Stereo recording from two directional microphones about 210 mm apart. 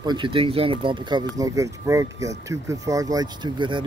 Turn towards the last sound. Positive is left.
turn(degrees=-20)  # may be behind; listen again after turning